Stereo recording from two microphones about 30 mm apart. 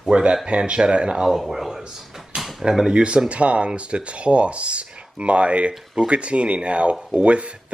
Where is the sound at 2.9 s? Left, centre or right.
Right.